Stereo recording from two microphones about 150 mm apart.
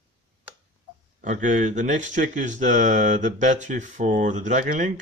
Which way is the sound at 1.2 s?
55° right (ahead or behind).